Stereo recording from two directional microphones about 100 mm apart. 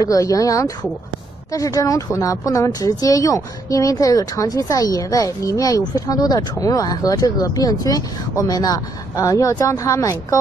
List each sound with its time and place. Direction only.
0.0 s a woman's voice: 35° left (ahead or behind)